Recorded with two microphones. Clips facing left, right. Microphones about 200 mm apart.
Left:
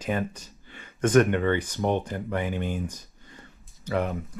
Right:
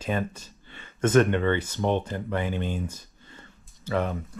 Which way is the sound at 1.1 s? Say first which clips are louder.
Even; 15° left (ahead or behind).